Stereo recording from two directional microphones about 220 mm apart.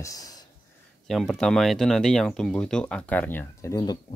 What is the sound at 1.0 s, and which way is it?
Speech, centre (ahead or behind).